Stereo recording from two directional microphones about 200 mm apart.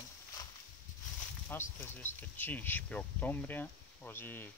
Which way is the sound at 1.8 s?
10° left (ahead or behind).